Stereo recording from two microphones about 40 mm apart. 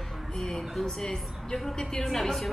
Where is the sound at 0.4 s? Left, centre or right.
Centre.